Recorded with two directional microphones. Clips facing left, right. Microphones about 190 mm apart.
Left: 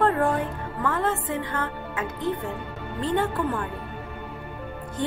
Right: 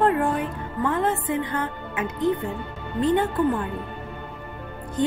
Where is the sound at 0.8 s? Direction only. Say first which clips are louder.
Right 2 dB; 20° right (ahead or behind).